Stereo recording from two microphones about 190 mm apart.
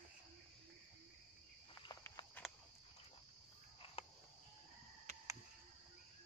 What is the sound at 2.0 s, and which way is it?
Walk, 15° left (ahead or behind).